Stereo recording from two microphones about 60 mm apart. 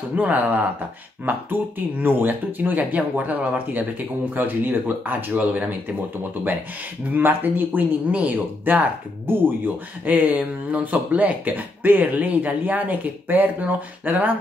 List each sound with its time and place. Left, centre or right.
0.1 s speech: right
7.2 s speech: right